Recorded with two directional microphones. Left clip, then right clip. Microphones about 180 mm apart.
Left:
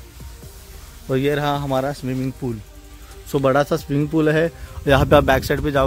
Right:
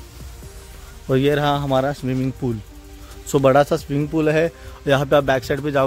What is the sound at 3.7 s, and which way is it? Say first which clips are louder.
A man's voice: even; 20° left (ahead or behind).